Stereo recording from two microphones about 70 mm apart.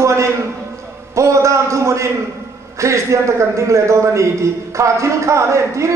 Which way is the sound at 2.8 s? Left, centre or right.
Right.